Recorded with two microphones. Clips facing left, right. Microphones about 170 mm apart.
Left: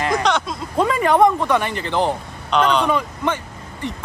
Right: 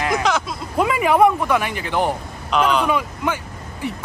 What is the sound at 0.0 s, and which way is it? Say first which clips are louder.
Speech: left 1 dB; 5° right (ahead or behind).